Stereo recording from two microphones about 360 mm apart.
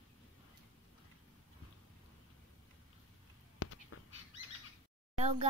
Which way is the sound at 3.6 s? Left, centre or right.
Left.